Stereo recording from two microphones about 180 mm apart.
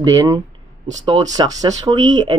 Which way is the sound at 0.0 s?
20° right (ahead or behind).